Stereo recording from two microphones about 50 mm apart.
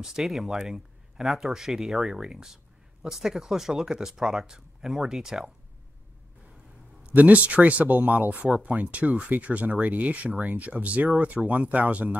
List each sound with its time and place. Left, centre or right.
0.0 s speech: centre
7.2 s speech: right